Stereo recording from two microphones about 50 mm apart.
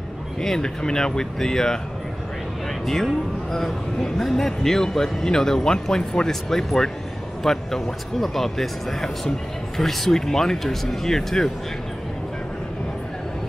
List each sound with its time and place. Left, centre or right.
0.4 s a man's voice: centre
3.5 s a man's voice: centre